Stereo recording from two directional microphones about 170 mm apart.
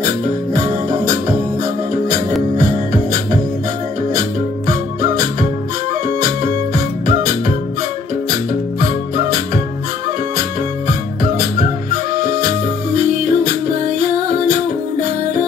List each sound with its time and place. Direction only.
2.5 s music: 50° right (ahead or behind)
8.8 s music: 50° right (ahead or behind)
12.2 s music: 50° right (ahead or behind)